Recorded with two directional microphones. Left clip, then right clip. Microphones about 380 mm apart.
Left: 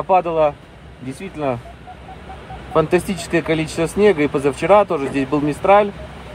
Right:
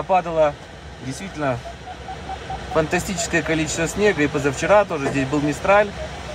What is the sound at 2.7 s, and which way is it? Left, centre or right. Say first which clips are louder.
Speech: left 4 dB; centre.